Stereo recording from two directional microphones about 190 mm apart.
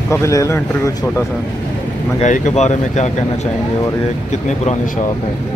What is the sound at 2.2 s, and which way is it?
Speech, 40° left (ahead or behind).